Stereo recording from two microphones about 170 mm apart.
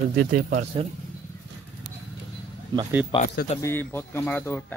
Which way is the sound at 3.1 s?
30° left (ahead or behind).